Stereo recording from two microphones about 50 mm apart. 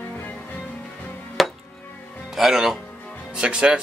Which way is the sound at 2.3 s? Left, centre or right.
Centre.